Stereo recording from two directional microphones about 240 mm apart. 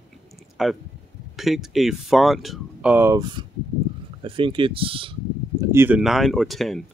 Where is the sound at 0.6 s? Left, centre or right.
Centre; by 5.1 s right.